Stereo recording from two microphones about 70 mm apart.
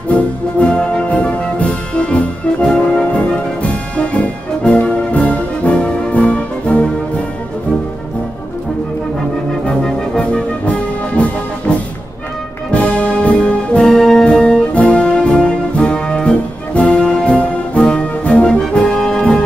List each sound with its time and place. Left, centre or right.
0.1 s music: centre
9.7 s music: centre
12.7 s brass instrument: centre